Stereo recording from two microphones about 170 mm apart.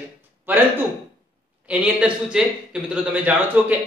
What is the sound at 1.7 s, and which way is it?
A man's voice, 5° right (ahead or behind).